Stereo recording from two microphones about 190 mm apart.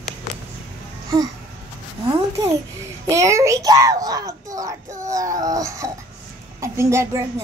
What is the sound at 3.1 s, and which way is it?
A child's voice, 15° right (ahead or behind).